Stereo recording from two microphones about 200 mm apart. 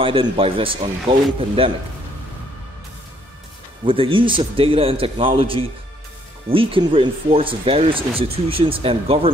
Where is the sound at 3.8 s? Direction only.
25° right (ahead or behind).